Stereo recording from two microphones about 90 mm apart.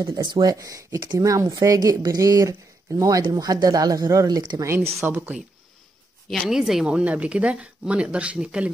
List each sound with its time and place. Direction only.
0.0 s speech: 50° right (ahead or behind)
5.0 s speech: 20° right (ahead or behind)
6.4 s speech: 5° right (ahead or behind)